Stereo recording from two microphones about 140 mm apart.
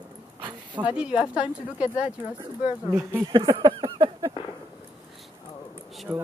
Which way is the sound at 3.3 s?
35° right (ahead or behind).